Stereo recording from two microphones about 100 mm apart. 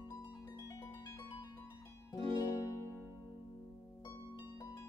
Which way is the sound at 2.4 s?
30° left (ahead or behind).